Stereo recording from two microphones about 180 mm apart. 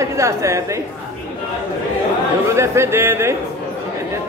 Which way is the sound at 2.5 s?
15° right (ahead or behind).